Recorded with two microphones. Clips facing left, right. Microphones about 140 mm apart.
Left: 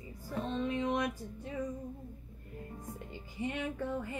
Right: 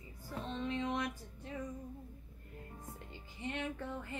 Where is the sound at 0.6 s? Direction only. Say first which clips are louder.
Left 3 dB; 15° left (ahead or behind).